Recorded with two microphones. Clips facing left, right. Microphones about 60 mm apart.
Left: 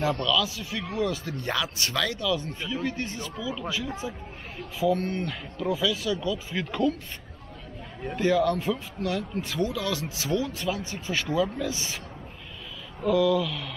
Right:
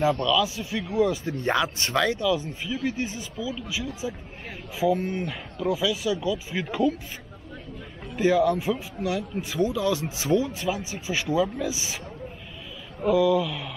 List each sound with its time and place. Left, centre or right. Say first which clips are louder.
0.0 s speech: right 3 dB; right
4.7 s speech: right 1 dB; centre
8.2 s speech: right 2 dB; centre
10.6 s speech: right 2 dB; centre
13.0 s speech: right 2 dB; centre